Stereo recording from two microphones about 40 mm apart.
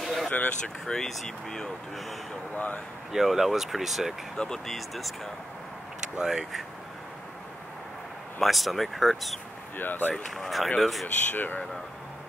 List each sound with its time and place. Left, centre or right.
0.0 s vehicle: centre
0.8 s speech: centre
2.5 s speech: left
3.1 s speech: centre
6.1 s speech: centre
8.4 s speech: centre
9.8 s speech: left
10.2 s speech: centre
11.3 s speech: left